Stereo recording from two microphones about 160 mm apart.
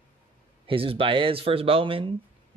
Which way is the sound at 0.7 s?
35° right (ahead or behind).